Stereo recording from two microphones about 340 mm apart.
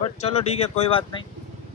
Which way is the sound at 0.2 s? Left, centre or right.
Centre.